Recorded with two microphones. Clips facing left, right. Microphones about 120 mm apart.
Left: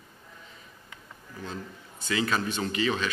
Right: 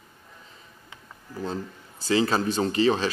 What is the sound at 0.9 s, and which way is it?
Speech, 35° right (ahead or behind).